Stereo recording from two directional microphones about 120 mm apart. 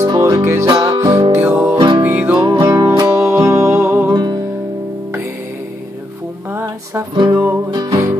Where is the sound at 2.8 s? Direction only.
30° right (ahead or behind).